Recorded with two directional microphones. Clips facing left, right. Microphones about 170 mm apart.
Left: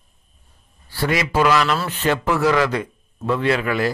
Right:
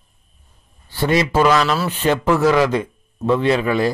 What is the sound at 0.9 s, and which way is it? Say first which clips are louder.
A man's voice: right 4 dB; 25° right (ahead or behind).